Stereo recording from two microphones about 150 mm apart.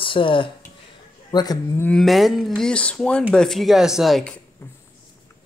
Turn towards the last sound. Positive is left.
turn(degrees=5)  # may be behind; listen again after turning